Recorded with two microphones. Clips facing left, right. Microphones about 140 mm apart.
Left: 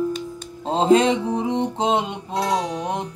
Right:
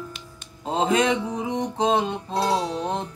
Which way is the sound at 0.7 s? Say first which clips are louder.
Left 5 dB; 30° left (ahead or behind).